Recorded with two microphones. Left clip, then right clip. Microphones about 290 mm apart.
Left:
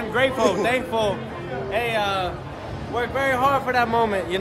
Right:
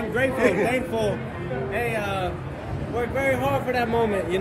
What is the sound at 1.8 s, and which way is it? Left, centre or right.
Speech, left.